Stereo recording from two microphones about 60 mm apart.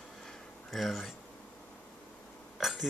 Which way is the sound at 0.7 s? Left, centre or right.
Centre.